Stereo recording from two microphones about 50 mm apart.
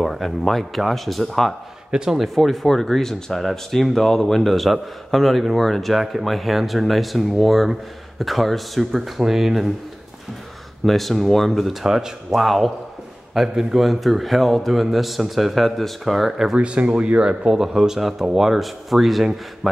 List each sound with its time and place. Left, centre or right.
0.0 s a man's voice: centre
1.9 s a man's voice: centre
2.1 s a man's voice: centre
10.9 s a man's voice: centre
11.8 s speech: centre
12.4 s a man's voice: centre
16.5 s a man's voice: right; by 19.8 s centre